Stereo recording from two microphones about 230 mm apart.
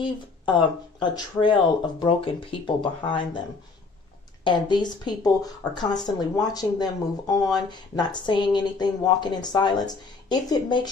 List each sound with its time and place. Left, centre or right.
0.0 s speech: left
4.5 s speech: centre